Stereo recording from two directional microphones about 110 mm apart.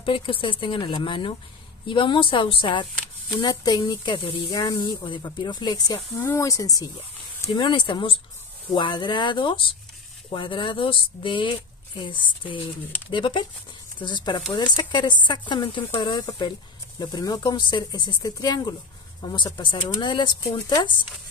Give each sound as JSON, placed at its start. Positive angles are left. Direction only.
{"t": 0.0, "sound": "speech", "side_deg": 55}
{"t": 3.3, "sound": "speech", "side_deg": 35}
{"t": 6.1, "sound": "speech", "side_deg": 25}